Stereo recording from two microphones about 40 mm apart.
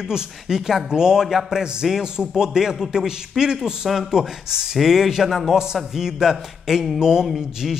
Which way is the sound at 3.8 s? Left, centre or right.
Centre.